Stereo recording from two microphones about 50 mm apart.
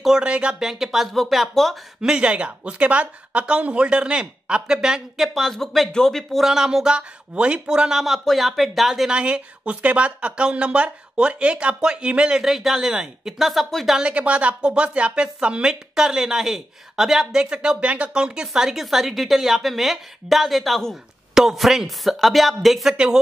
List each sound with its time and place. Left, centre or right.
0.0 s speech: centre
0.6 s speech: centre
2.0 s speech: centre
6.4 s speech: centre
8.0 s speech: centre
9.1 s speech: right
13.4 s speech: centre
13.9 s speech: right; by 22.9 s centre